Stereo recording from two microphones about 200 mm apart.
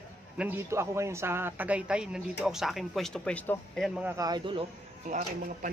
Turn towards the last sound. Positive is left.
turn(degrees=-40)  # may be behind; listen again after turning